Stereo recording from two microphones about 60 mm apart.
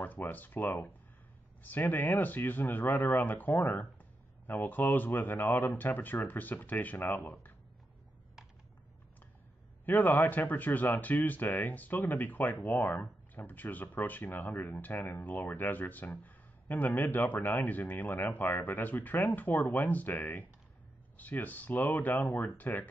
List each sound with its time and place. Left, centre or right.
0.3 s speech: left
9.8 s speech: left